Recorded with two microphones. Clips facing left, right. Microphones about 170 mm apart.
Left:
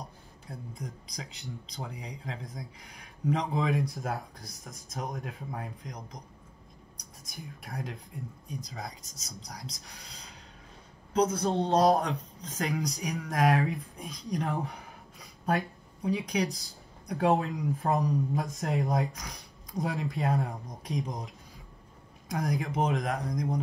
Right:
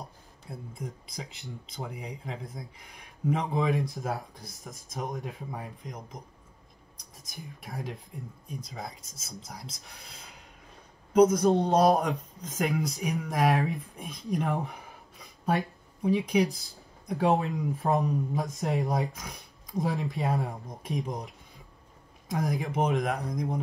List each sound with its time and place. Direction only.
0.5 s speech: 5° right (ahead or behind)
7.2 s speech: centre (ahead or behind)
11.1 s a man's voice: 15° right (ahead or behind)
12.6 s speech: centre (ahead or behind)